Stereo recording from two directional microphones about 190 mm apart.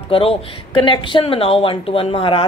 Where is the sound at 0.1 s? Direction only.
30° left (ahead or behind).